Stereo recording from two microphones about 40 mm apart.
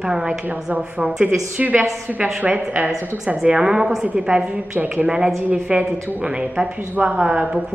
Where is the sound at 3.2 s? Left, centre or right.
Centre.